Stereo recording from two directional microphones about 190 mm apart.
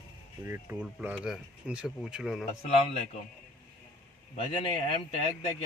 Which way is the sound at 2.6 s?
35° left (ahead or behind).